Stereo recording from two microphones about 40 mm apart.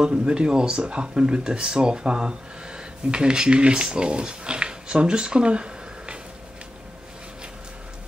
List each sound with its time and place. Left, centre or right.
0.0 s speech: right